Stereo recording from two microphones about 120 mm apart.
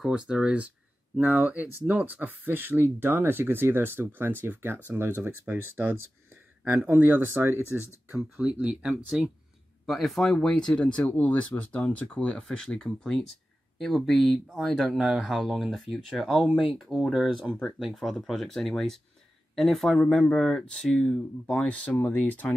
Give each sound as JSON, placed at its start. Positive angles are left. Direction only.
{"t": 0.3, "sound": "speech", "side_deg": -10}
{"t": 8.4, "sound": "speech", "side_deg": -10}
{"t": 17.5, "sound": "speech", "side_deg": 10}
{"t": 17.7, "sound": "speech", "side_deg": 0}